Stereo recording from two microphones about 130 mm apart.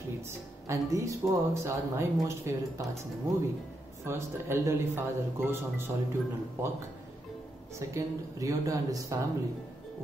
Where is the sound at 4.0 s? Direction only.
20° right (ahead or behind).